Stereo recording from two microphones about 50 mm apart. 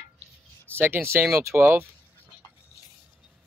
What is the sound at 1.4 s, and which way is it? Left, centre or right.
Speech, right.